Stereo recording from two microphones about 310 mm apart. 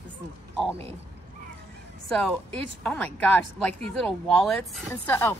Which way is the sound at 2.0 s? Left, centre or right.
Centre.